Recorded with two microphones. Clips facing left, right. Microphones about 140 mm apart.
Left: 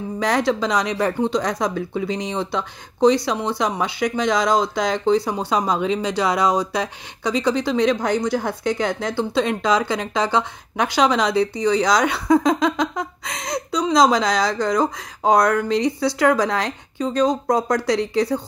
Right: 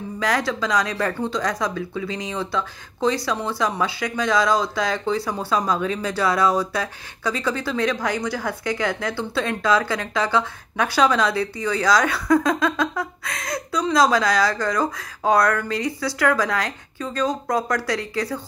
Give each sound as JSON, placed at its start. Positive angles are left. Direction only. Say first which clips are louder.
{"t": 0.2, "sound": "speech", "louder": "left 3 dB", "side_deg": 25}